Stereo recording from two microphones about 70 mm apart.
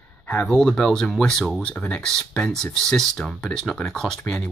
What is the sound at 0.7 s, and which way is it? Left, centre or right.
Speech, centre.